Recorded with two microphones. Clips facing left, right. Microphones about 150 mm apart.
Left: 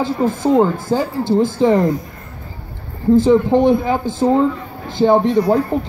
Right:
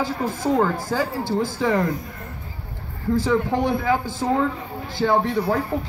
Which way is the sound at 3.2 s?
20° left (ahead or behind).